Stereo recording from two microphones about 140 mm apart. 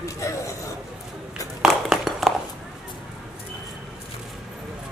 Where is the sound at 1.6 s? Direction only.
Centre (ahead or behind).